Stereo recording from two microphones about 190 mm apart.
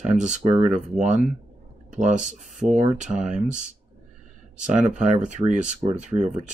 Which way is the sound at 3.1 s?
5° right (ahead or behind).